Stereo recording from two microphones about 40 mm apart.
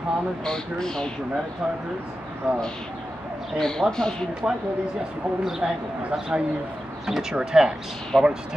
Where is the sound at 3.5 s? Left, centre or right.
Centre.